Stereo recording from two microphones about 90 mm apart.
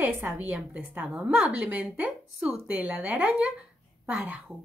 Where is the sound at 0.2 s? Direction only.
15° right (ahead or behind).